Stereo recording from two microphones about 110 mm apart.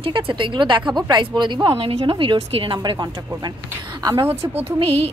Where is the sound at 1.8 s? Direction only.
60° right (ahead or behind); by 4.3 s 35° right (ahead or behind).